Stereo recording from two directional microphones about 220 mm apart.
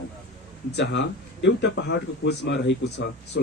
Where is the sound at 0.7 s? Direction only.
55° left (ahead or behind).